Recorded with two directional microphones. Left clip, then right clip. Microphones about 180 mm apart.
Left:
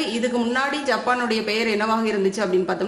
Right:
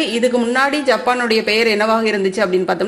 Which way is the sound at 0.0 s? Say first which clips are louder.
Right 7 dB; 30° right (ahead or behind).